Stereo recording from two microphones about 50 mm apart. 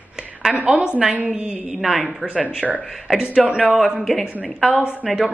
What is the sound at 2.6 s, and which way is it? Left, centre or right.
Speech, centre.